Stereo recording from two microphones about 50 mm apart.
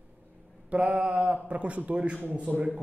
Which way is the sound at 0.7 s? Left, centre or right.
Right.